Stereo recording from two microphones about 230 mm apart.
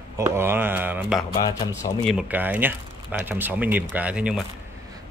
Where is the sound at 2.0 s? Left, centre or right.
Centre.